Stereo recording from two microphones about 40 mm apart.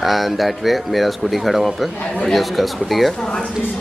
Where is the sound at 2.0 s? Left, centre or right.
Left.